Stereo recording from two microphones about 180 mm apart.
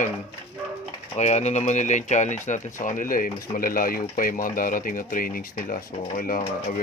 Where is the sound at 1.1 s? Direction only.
40° left (ahead or behind).